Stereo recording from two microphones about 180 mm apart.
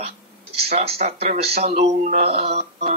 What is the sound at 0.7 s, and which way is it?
A man's voice, 35° right (ahead or behind).